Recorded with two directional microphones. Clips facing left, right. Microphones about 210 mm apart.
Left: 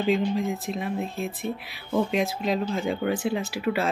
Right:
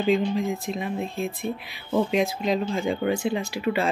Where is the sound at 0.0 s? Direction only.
Centre (ahead or behind).